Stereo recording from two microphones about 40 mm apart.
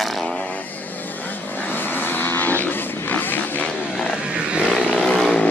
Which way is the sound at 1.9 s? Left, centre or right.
Left.